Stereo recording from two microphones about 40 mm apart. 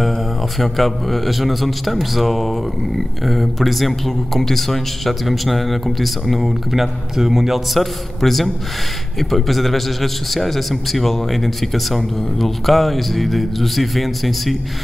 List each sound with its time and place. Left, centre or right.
0.0 s speech: centre